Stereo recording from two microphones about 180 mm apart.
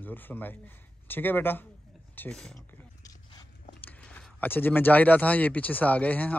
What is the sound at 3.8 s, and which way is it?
Speech, 5° left (ahead or behind).